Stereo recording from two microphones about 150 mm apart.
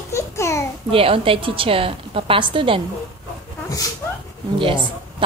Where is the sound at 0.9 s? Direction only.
35° right (ahead or behind).